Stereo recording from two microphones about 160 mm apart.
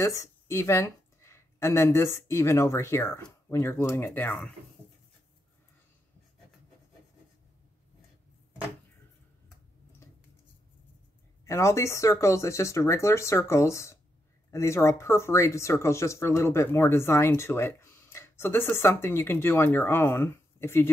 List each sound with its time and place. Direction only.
0.0 s speech: 20° left (ahead or behind)
11.4 s speech: 20° left (ahead or behind)